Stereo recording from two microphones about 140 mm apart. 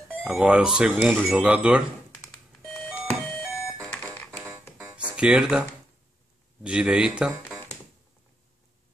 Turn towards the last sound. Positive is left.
turn(degrees=-5)  # may be behind; listen again after turning